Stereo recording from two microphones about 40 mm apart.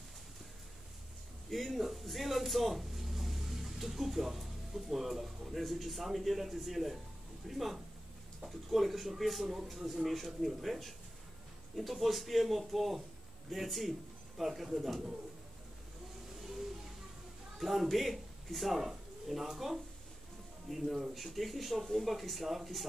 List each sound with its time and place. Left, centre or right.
1.5 s a man's voice: centre
16.3 s a sound: centre
17.6 s speech: centre